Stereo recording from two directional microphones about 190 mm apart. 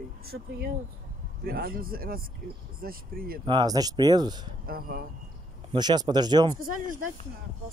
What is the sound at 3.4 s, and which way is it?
Speech, 20° right (ahead or behind).